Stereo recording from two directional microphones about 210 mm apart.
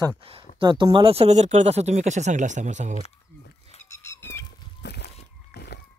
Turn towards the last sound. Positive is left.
turn(degrees=50)  # may be behind; listen again after turning